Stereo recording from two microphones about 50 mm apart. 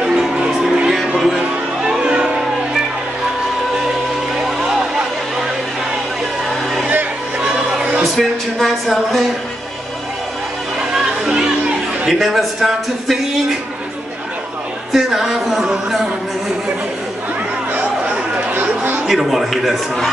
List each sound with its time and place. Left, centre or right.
0.0 s music: centre
2.0 s music: centre
4.4 s music: centre
7.3 s music: right
8.2 s speech: centre
12.1 s a man's voice: centre
14.9 s a sound: centre
17.7 s chatter: right
19.0 s a man's voice: centre